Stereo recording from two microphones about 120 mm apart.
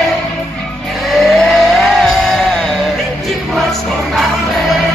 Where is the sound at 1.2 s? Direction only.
Centre (ahead or behind).